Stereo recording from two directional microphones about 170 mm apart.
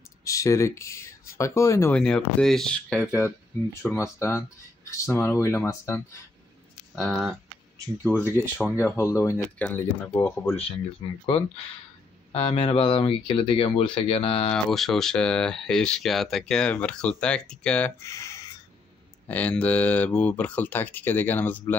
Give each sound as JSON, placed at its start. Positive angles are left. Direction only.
{"t": 0.2, "sound": "speech", "side_deg": 20}
{"t": 2.0, "sound": "speech", "side_deg": 5}
{"t": 3.1, "sound": "speech", "side_deg": 15}
{"t": 7.0, "sound": "speech", "side_deg": 0}
{"t": 8.2, "sound": "speech", "side_deg": 10}
{"t": 11.2, "sound": "speech", "side_deg": 35}
{"t": 14.5, "sound": "speech", "side_deg": 0}